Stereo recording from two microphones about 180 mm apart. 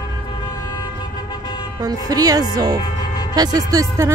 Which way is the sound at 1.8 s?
20° right (ahead or behind).